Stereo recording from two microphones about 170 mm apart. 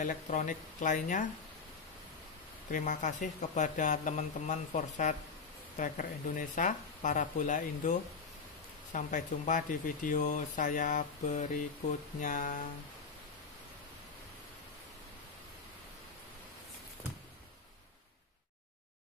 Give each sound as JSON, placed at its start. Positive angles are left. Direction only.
{"t": 0.0, "sound": "speech", "side_deg": 50}
{"t": 2.7, "sound": "speech", "side_deg": 50}
{"t": 8.9, "sound": "speech", "side_deg": 50}